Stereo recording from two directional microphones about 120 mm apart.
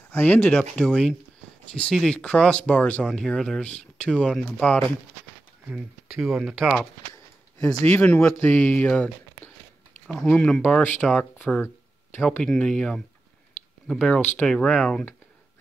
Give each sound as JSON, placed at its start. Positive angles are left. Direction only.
{"t": 0.1, "sound": "speech", "side_deg": 15}
{"t": 6.0, "sound": "speech", "side_deg": 0}
{"t": 7.6, "sound": "speech", "side_deg": 15}
{"t": 11.4, "sound": "speech", "side_deg": 15}